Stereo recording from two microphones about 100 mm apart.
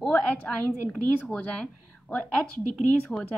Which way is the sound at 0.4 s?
10° left (ahead or behind).